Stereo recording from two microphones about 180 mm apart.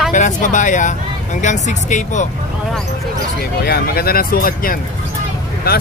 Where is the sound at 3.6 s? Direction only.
60° left (ahead or behind).